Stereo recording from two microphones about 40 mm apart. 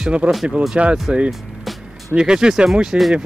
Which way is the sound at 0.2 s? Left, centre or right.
Right.